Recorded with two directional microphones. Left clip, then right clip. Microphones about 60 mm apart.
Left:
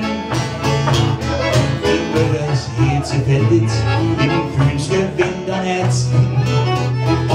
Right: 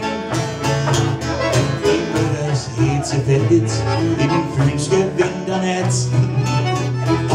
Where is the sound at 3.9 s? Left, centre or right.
Right.